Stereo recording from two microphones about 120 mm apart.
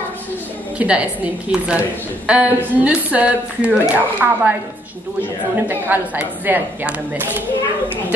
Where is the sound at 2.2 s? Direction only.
10° right (ahead or behind).